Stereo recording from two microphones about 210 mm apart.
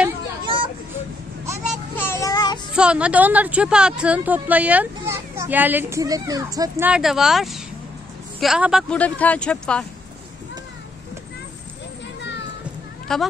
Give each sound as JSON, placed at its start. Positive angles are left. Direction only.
{"t": 1.4, "sound": "vehicle", "side_deg": -15}
{"t": 2.0, "sound": "child singing", "side_deg": 15}
{"t": 2.7, "sound": "speech", "side_deg": -5}
{"t": 6.9, "sound": "speech", "side_deg": 0}
{"t": 13.1, "sound": "speech", "side_deg": 0}